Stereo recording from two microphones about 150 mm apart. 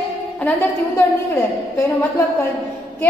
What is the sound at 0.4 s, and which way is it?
A woman's voice, 15° left (ahead or behind).